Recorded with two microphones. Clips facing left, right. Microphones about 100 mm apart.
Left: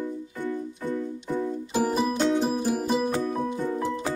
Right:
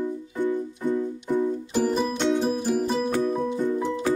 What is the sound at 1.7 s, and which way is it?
Music, 5° left (ahead or behind).